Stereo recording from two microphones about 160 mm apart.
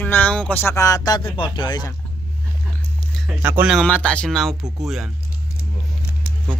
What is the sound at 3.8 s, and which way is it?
Speech, 5° left (ahead or behind).